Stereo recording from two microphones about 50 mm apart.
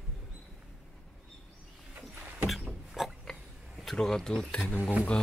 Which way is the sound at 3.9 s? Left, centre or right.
Centre.